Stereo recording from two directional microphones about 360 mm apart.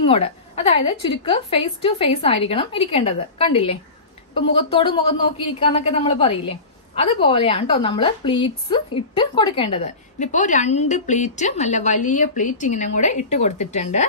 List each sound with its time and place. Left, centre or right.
0.0 s a woman's voice: centre